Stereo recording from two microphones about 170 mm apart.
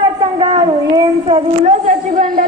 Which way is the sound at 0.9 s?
25° right (ahead or behind).